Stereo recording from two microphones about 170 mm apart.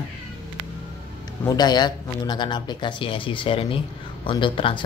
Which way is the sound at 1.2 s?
25° left (ahead or behind).